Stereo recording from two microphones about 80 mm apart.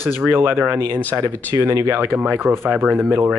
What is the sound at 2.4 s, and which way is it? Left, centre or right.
Speech, right.